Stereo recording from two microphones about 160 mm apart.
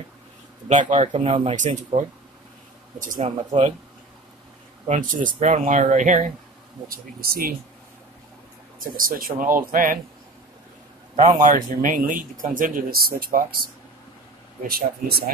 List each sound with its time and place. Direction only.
0.7 s speech: 50° right (ahead or behind)
4.8 s speech: 55° right (ahead or behind)
6.9 s speech: 65° right (ahead or behind)
8.7 s speech: 60° right (ahead or behind)
11.1 s speech: 50° right (ahead or behind); by 15.3 s 70° right (ahead or behind)